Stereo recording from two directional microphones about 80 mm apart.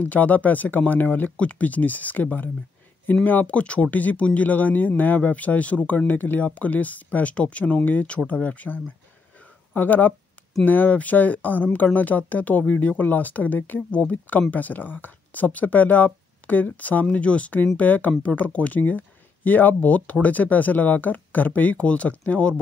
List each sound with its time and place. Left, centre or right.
0.0 s speech: left